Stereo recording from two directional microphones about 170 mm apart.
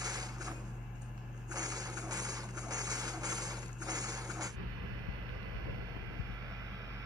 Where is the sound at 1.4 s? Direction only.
20° right (ahead or behind).